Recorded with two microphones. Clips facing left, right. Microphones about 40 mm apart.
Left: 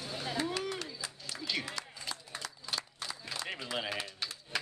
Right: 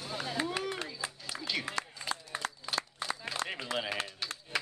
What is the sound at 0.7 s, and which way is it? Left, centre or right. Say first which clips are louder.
Run: right 2 dB; right.